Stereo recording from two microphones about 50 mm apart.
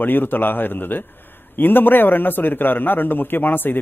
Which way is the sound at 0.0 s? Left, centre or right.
Left.